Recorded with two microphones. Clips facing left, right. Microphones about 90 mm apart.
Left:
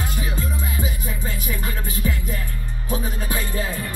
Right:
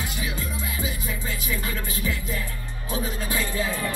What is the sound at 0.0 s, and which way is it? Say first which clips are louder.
Music: left 3 dB; 40° left (ahead or behind).